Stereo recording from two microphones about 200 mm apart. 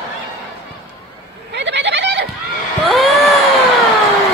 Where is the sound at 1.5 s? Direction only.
60° right (ahead or behind).